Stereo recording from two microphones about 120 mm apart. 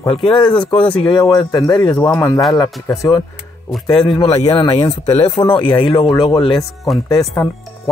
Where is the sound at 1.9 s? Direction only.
15° left (ahead or behind).